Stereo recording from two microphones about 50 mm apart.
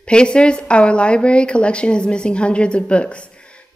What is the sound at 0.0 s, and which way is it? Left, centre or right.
A woman's voice, centre.